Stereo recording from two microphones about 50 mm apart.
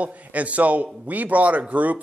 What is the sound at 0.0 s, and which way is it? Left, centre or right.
A man's voice, right.